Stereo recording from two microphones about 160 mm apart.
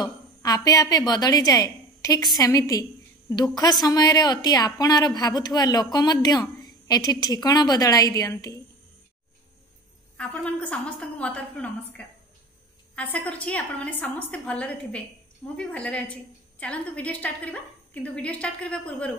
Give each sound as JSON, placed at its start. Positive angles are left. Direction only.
{"t": 0.0, "sound": "a woman's voice", "side_deg": 25}
{"t": 10.1, "sound": "a woman's voice", "side_deg": 10}
{"t": 12.9, "sound": "a woman's voice", "side_deg": 10}